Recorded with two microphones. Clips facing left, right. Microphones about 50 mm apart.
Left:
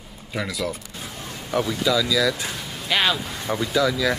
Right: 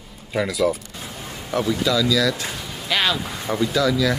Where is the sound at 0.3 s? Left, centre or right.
Centre.